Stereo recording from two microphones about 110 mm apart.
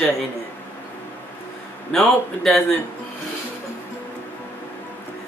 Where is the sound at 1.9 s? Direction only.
5° left (ahead or behind).